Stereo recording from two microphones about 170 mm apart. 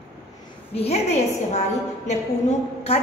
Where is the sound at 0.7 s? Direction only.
40° left (ahead or behind).